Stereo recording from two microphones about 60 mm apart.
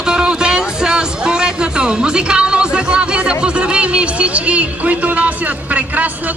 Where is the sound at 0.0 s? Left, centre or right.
Centre.